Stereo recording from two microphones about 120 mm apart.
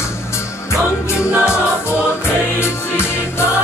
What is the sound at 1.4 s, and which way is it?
Music, 20° left (ahead or behind).